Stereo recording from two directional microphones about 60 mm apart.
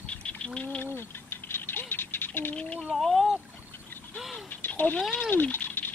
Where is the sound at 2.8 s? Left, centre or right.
Centre.